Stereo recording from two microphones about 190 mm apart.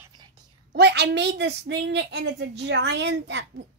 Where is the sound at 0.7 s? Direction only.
60° right (ahead or behind).